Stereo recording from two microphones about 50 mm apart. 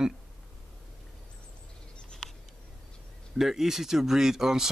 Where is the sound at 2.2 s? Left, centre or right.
Centre.